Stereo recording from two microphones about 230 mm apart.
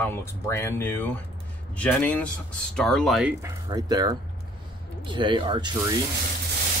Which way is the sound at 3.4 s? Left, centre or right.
Centre.